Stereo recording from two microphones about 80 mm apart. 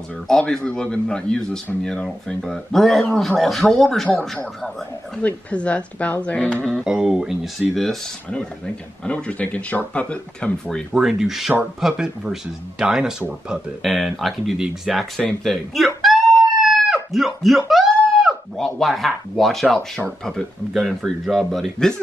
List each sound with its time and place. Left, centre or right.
0.3 s speech: centre
5.2 s speech: centre
6.8 s speech: centre
9.0 s speech: centre
11.0 s speech: centre
16.0 s a sound: centre
18.8 s speech: centre